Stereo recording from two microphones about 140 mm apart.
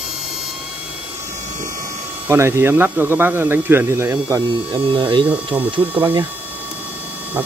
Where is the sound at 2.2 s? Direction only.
20° right (ahead or behind).